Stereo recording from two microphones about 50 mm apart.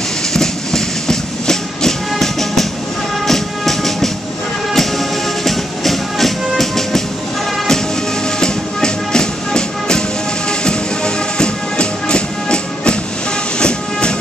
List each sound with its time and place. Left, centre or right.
0.3 s train: centre
3.3 s music: centre
8.4 s music: centre
11.3 s music: centre